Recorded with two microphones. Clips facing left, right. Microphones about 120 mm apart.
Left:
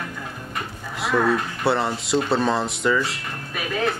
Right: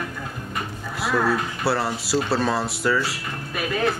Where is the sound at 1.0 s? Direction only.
Centre (ahead or behind).